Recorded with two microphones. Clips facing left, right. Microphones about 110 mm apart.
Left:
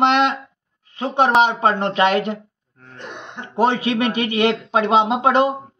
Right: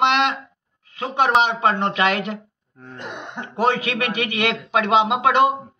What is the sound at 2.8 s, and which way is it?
Throat clearing, 10° right (ahead or behind).